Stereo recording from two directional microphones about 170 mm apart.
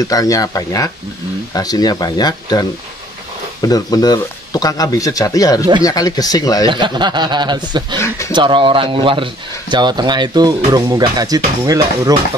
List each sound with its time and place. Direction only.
0.0 s speech: 20° left (ahead or behind)
6.7 s speech: 25° right (ahead or behind)